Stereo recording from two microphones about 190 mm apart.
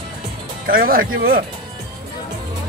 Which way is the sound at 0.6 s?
50° right (ahead or behind).